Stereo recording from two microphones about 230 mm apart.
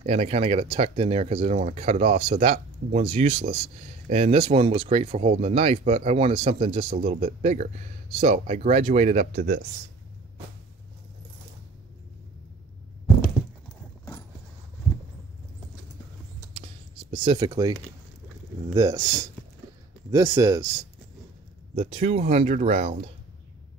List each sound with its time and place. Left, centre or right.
0.0 s speech: right
16.5 s a sound: right
18.7 s speech: centre
21.7 s speech: right